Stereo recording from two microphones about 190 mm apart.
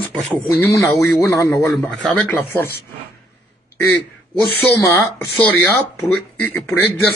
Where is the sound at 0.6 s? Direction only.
15° left (ahead or behind).